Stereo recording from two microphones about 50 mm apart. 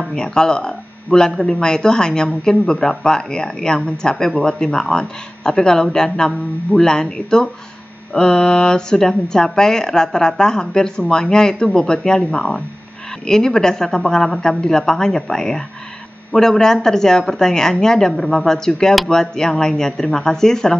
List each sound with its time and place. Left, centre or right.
0.1 s speech: centre